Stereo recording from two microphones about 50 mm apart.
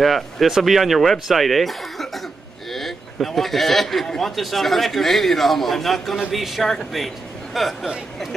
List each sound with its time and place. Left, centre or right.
0.0 s a man's voice: centre